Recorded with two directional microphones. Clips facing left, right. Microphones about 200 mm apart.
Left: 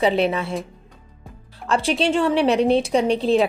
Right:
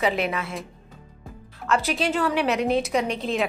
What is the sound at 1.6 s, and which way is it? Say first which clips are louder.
A woman's voice: left 4 dB; 30° left (ahead or behind).